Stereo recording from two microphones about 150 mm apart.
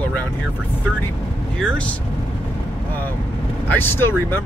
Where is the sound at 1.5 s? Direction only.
5° left (ahead or behind).